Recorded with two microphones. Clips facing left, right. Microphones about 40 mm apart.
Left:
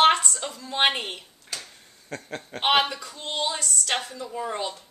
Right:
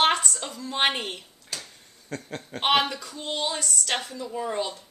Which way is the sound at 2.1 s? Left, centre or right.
Centre.